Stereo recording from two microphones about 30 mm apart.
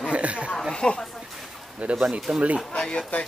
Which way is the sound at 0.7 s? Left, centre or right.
Left.